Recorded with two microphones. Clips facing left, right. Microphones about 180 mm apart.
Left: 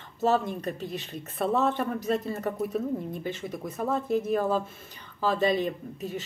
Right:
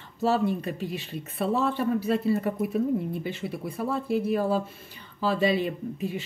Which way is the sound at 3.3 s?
40° left (ahead or behind).